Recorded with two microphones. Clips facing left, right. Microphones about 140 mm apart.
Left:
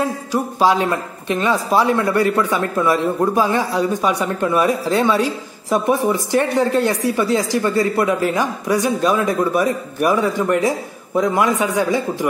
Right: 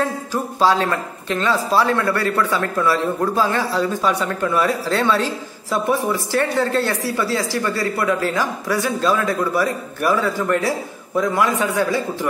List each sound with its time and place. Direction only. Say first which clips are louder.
0.0 s a woman's voice: left 2 dB; 15° left (ahead or behind)